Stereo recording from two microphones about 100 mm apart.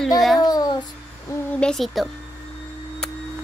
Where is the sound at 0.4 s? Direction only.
45° left (ahead or behind).